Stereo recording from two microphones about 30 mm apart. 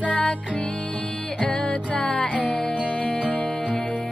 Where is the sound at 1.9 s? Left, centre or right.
Left.